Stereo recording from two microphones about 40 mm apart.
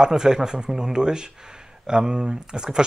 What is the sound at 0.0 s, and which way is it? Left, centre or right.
Speech, centre.